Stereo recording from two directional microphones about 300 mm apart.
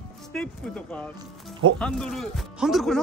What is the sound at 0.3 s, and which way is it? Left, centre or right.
Speech, centre.